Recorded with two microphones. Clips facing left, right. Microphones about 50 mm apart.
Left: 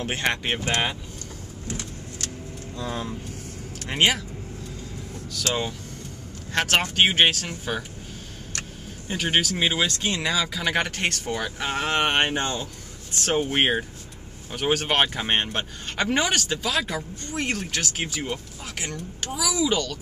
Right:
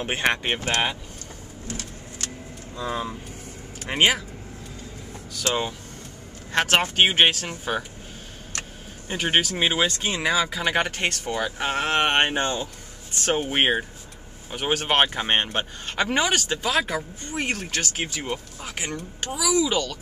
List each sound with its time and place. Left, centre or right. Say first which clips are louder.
0.0 s speech: right 2 dB; centre
2.7 s speech: right 2 dB; centre
5.3 s speech: right 1 dB; centre
9.1 s speech: right 1 dB; centre
18.3 s speech: right 1 dB; centre
19.4 s speech: right 2 dB; centre